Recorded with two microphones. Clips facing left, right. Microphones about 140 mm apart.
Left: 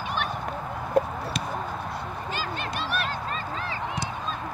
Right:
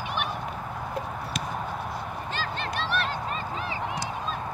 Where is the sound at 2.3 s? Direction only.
10° left (ahead or behind).